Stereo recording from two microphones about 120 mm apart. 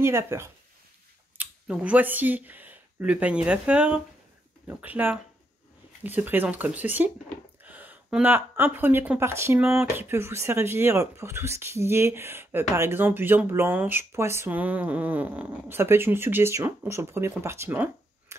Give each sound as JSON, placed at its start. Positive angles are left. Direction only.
{"t": 0.0, "sound": "speech", "side_deg": -20}
{"t": 1.4, "sound": "speech", "side_deg": -10}